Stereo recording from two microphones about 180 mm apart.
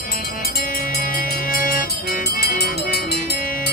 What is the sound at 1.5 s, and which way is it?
Music, 50° left (ahead or behind).